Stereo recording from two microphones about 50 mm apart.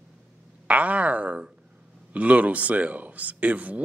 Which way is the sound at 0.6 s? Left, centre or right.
Right.